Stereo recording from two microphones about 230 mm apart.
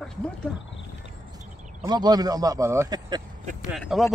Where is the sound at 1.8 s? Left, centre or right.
Centre.